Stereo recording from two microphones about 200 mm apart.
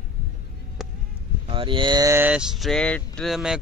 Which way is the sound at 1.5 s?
25° right (ahead or behind).